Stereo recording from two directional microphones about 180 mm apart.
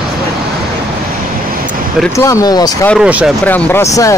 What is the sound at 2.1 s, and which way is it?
Speech, 20° left (ahead or behind).